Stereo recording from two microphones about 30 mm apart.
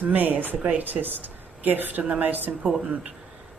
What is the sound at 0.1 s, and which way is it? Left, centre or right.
Speech, right.